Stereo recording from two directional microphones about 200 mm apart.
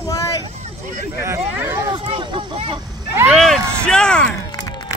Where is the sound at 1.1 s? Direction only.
15° right (ahead or behind).